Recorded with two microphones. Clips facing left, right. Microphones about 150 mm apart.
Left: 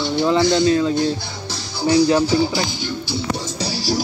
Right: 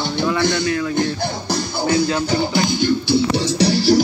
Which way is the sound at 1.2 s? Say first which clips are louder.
Right 9 dB; 55° right (ahead or behind).